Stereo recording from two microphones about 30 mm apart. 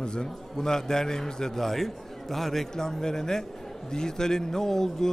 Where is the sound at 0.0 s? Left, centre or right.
Left; by 2.7 s centre.